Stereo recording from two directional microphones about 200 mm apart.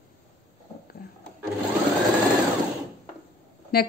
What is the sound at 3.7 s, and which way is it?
Speech, 50° left (ahead or behind).